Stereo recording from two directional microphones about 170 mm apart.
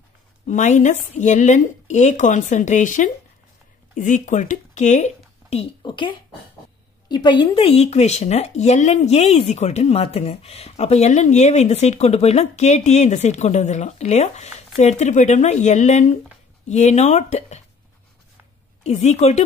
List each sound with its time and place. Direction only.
0.5 s a woman's voice: 45° left (ahead or behind)
18.9 s speech: 40° left (ahead or behind)